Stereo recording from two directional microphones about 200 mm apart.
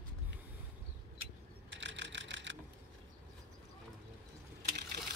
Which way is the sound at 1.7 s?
65° right (ahead or behind).